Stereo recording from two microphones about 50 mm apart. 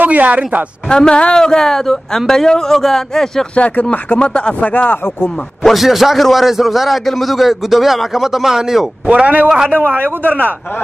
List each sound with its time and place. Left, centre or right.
0.0 s speech: right
0.8 s speech: centre
3.5 s speech: left
4.2 s speech: centre
5.6 s a man's voice: centre
9.0 s speech: right
10.0 s speech: right